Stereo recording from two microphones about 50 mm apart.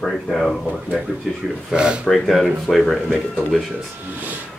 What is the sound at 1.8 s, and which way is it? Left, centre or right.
Speech, centre.